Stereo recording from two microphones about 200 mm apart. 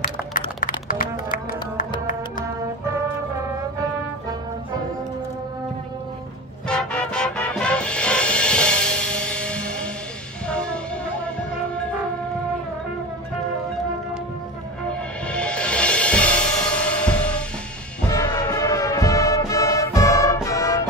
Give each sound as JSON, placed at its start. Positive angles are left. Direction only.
{"t": 0.0, "sound": "music", "side_deg": 45}
{"t": 6.7, "sound": "music", "side_deg": 5}
{"t": 15.2, "sound": "music", "side_deg": 5}
{"t": 18.1, "sound": "music", "side_deg": 20}